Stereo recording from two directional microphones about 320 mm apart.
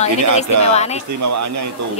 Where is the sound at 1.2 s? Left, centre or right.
Right.